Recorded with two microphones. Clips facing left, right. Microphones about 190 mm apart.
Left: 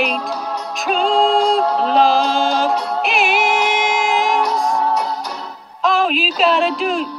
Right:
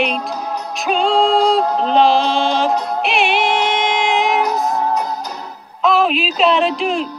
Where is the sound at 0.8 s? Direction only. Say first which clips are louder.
Right 1 dB; centre (ahead or behind).